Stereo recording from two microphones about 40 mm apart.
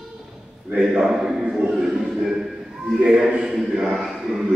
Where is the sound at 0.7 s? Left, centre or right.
Right.